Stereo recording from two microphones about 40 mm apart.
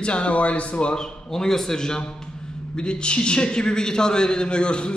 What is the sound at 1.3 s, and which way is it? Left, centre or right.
A man's voice, centre.